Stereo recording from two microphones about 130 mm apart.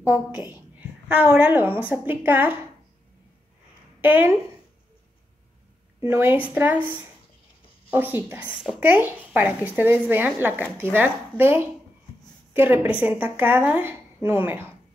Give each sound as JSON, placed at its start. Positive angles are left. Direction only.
{"t": 0.0, "sound": "a woman's voice", "side_deg": -15}
{"t": 4.0, "sound": "a woman's voice", "side_deg": -15}
{"t": 5.9, "sound": "a woman's voice", "side_deg": -15}